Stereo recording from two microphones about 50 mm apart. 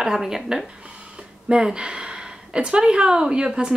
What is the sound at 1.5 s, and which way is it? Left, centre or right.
Speech, centre.